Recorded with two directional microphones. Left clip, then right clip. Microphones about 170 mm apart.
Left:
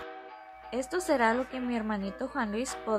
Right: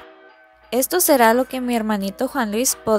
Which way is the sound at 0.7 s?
55° right (ahead or behind).